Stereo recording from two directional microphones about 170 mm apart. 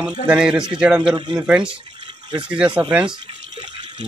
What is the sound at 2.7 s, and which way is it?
Speech, 30° right (ahead or behind).